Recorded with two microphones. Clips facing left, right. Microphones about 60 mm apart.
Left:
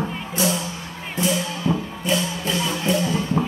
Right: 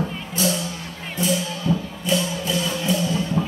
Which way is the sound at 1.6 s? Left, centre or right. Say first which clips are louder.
Even; left.